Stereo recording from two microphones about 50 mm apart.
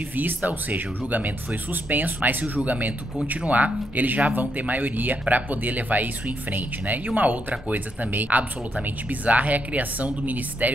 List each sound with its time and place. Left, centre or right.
0.1 s speech: right